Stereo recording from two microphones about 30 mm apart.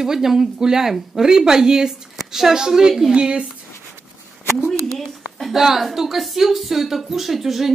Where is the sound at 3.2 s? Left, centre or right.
Right.